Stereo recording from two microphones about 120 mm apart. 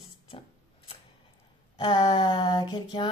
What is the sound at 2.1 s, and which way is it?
Speech, 40° left (ahead or behind).